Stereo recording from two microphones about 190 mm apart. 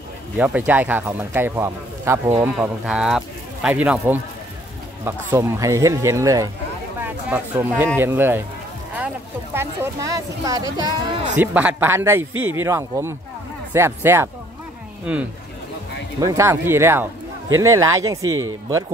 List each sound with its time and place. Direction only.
0.4 s speech: 10° right (ahead or behind)
11.3 s speech: 10° right (ahead or behind)